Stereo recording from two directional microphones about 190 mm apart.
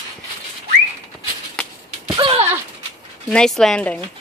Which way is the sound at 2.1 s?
25° right (ahead or behind).